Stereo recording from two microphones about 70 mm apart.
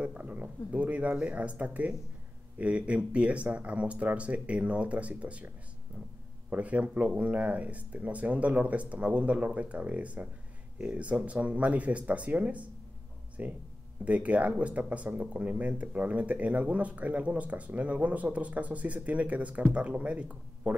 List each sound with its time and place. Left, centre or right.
0.0 s speech: right
6.5 s speech: centre